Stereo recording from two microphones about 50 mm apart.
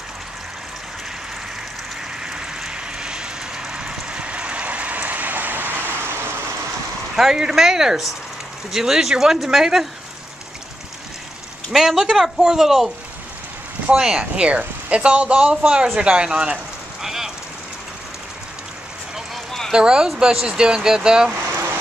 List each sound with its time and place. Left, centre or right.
2.2 s vehicle: centre; by 5.8 s right
7.2 s speech: centre
11.7 s speech: centre
13.9 s speech: centre
17.0 s a sound: centre
19.7 s speech: centre